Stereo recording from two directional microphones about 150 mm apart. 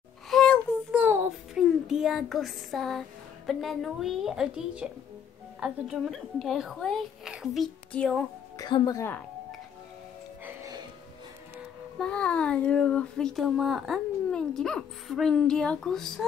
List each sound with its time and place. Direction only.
0.3 s babbling: 5° left (ahead or behind)
0.9 s child singing: 10° right (ahead or behind)
1.6 s speech: centre (ahead or behind)
8.5 s a woman's voice: 30° left (ahead or behind)
10.4 s music: 20° right (ahead or behind)
12.0 s speech: 5° left (ahead or behind)